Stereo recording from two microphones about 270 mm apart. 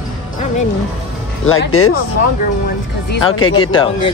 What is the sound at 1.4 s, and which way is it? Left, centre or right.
Speech, left.